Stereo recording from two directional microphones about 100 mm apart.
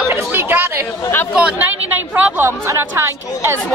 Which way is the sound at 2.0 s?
20° right (ahead or behind).